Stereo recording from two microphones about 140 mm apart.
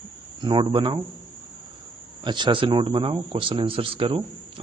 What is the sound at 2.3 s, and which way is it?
Speech, 35° right (ahead or behind).